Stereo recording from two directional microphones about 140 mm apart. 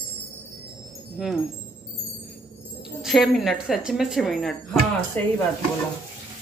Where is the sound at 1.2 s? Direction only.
Centre (ahead or behind).